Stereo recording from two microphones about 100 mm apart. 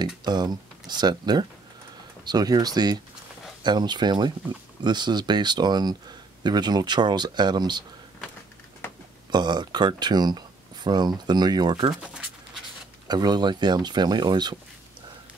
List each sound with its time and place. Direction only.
0.0 s speech: 45° right (ahead or behind)
9.3 s speech: 45° right (ahead or behind)
11.9 s a sound: 5° right (ahead or behind)
13.1 s speech: 45° right (ahead or behind)